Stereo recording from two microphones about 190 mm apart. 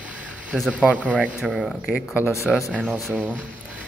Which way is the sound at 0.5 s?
5° right (ahead or behind).